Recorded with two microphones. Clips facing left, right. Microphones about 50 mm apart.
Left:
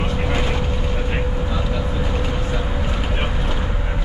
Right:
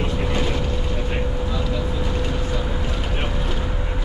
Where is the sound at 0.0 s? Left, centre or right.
Centre.